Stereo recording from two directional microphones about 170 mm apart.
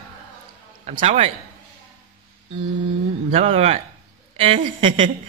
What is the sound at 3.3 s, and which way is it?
A man's voice, 35° right (ahead or behind).